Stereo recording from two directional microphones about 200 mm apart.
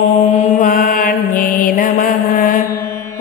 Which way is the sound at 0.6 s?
40° left (ahead or behind).